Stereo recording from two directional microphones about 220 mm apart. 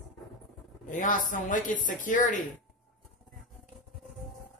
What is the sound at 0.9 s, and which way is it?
Speech, 35° left (ahead or behind).